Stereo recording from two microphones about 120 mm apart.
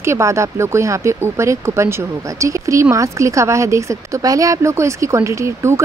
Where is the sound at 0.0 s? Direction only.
25° right (ahead or behind).